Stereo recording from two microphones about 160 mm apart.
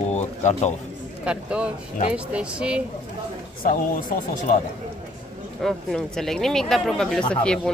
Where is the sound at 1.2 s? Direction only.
5° right (ahead or behind).